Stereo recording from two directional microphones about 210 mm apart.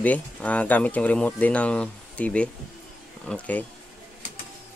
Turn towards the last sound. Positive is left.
turn(degrees=5)  # may be behind; listen again after turning